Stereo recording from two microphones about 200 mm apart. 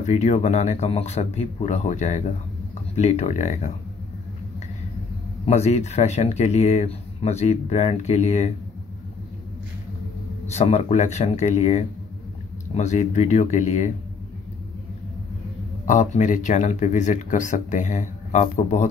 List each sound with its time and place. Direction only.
0.0 s speech: 35° left (ahead or behind)
5.4 s speech: 35° left (ahead or behind)
10.4 s speech: 35° left (ahead or behind)
15.8 s speech: 35° left (ahead or behind)